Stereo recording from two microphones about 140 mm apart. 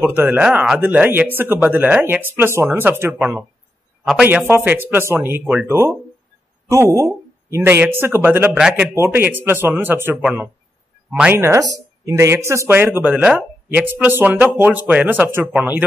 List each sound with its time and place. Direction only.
0.0 s a man's voice: 15° right (ahead or behind)
8.9 s speech: 15° right (ahead or behind)
11.3 s speech: 20° right (ahead or behind)